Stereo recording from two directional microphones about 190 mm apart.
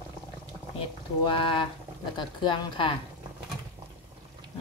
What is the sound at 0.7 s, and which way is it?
Speech, 25° left (ahead or behind).